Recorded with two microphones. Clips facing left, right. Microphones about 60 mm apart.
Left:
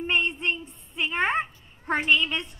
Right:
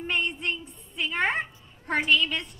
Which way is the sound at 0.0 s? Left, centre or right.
Left.